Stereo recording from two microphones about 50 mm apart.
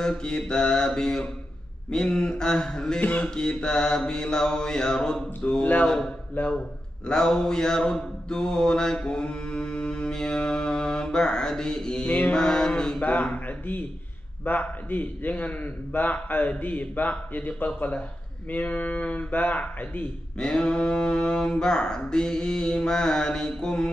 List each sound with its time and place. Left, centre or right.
0.0 s mantra: centre
3.0 s speech: left
3.3 s mantra: centre
5.6 s speech: left
6.4 s speech: left
7.1 s mantra: centre
12.1 s speech: left
12.4 s mantra: centre
13.0 s a man's voice: left
20.3 s mantra: centre